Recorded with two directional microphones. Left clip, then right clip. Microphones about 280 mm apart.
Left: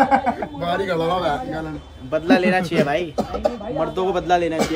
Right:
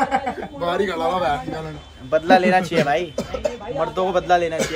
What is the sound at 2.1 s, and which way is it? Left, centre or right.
Speech, centre.